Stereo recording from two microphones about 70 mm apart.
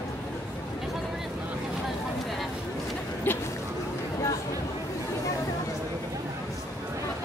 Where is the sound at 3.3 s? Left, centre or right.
Left.